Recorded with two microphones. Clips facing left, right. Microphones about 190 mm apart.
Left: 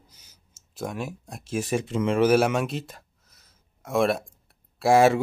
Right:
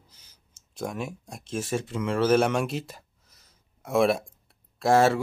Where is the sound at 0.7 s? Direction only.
Centre (ahead or behind).